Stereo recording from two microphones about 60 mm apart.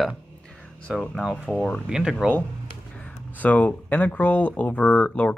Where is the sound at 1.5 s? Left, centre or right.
Centre.